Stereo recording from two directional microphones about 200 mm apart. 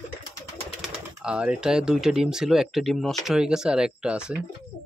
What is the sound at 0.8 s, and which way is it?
Speech, 5° right (ahead or behind).